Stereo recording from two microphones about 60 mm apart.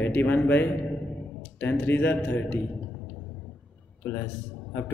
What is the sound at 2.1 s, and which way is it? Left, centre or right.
Speech, left.